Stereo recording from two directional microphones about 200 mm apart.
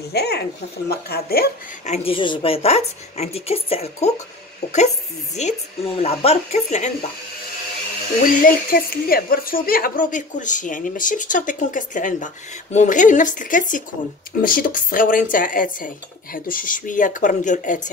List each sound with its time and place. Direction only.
0.1 s speech: 55° left (ahead or behind)
1.9 s a woman's voice: 25° left (ahead or behind)
8.3 s a woman's voice: 45° left (ahead or behind)